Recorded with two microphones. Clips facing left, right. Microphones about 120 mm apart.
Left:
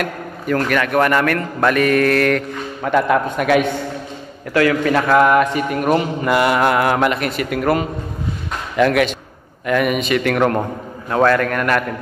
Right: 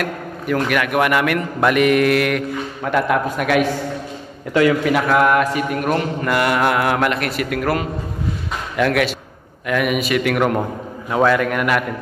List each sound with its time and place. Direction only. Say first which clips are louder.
0.0 s a man's voice: left 1 dB; 5° right (ahead or behind)
2.8 s mantra: left 3 dB; centre (ahead or behind)